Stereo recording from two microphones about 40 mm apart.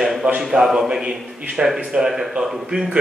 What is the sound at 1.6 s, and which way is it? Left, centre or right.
Speech, centre.